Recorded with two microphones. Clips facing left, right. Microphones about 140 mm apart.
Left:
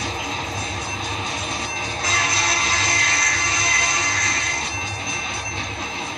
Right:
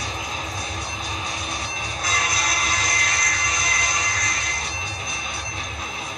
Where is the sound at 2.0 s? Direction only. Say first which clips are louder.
Left 1 dB; 30° left (ahead or behind).